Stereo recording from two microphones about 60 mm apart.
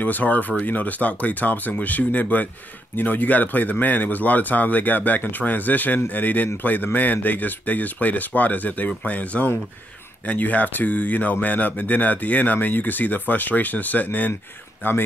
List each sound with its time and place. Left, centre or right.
0.0 s speech: left